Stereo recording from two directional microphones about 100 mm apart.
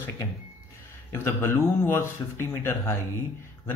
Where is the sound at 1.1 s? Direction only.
25° left (ahead or behind).